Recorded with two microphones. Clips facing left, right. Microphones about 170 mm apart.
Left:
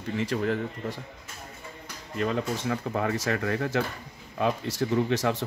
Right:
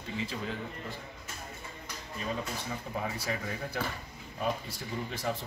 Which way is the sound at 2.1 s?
75° left (ahead or behind).